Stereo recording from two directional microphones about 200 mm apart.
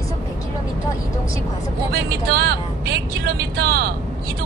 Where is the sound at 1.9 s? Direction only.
55° right (ahead or behind).